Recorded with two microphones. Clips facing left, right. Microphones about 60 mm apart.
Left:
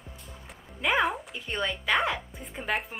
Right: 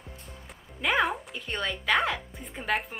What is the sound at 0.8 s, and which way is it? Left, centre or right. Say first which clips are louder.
A woman's voice: even; centre.